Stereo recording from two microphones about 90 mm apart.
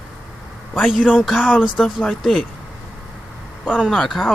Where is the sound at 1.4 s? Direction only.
15° left (ahead or behind).